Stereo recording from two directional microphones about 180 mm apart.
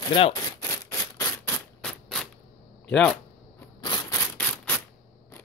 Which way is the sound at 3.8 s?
20° left (ahead or behind).